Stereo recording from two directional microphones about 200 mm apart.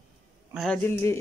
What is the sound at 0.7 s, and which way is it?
Speech, 10° left (ahead or behind).